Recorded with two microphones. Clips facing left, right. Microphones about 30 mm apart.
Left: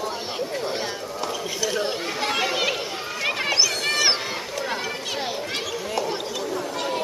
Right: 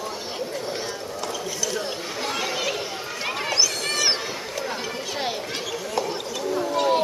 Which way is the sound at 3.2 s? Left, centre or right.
Centre.